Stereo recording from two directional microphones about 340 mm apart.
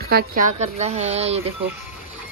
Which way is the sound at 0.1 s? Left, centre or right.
Right.